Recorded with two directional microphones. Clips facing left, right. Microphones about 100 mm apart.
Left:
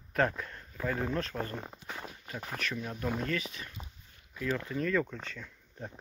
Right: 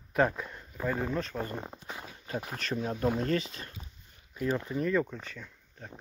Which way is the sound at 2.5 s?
30° right (ahead or behind).